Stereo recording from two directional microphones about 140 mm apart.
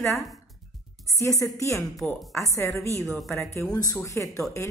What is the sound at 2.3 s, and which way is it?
Speech, 20° left (ahead or behind).